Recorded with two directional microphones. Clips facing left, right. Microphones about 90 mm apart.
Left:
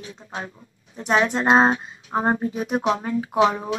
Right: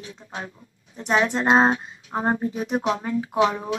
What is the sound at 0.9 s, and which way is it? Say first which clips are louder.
Speech: left 1 dB; 30° left (ahead or behind).